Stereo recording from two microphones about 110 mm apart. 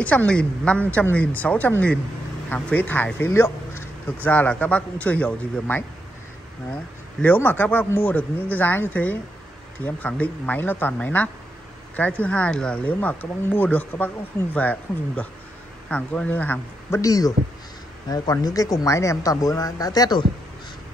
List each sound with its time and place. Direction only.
0.0 s speech: 15° left (ahead or behind)
17.0 s speech: 35° left (ahead or behind)